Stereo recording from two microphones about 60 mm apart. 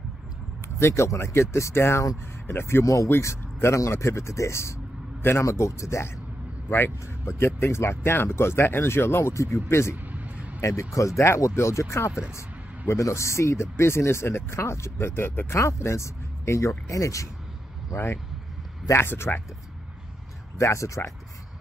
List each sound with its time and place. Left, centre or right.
0.7 s speech: left
2.8 s speech: left
3.2 s speech: left
6.7 s speech: left
10.1 s a sound: right
10.6 s speech: left
17.9 s speech: left
20.5 s speech: left